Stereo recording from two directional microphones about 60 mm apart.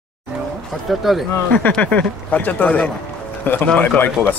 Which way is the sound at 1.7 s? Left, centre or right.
Left.